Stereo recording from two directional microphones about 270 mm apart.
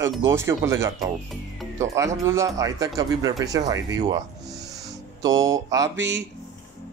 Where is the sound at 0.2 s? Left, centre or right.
Centre.